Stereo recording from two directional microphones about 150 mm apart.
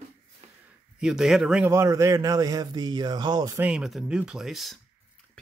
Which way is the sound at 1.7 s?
20° right (ahead or behind).